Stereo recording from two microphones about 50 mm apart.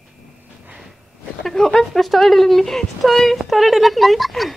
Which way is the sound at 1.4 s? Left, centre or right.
Centre.